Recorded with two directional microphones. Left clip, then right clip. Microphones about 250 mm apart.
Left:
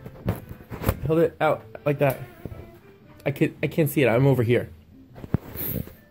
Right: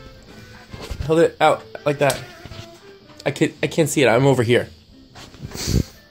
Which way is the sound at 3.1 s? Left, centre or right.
Centre.